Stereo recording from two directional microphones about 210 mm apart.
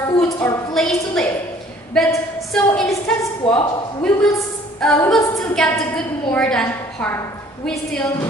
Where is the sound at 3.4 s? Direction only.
25° left (ahead or behind).